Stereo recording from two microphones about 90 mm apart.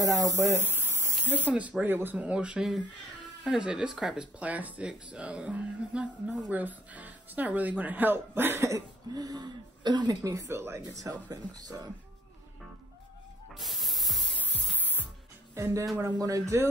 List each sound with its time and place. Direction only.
0.0 s music: 40° right (ahead or behind)
0.4 s a sound: 30° right (ahead or behind)
1.2 s speech: 20° right (ahead or behind)
8.7 s speech: 45° right (ahead or behind)
11.1 s speech: 45° right (ahead or behind)
13.5 s spray: centre (ahead or behind)
14.4 s music: 20° left (ahead or behind)
15.5 s speech: 35° right (ahead or behind)
16.2 s music: 40° right (ahead or behind)